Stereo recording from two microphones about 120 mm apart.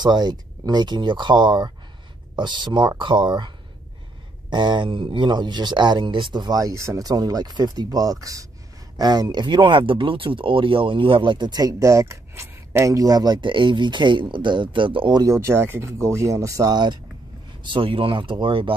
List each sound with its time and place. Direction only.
0.0 s speech: 35° right (ahead or behind)
15.2 s speech: 20° right (ahead or behind); by 18.7 s 45° right (ahead or behind)